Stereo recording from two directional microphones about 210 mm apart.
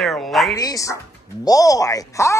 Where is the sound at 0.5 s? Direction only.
15° left (ahead or behind).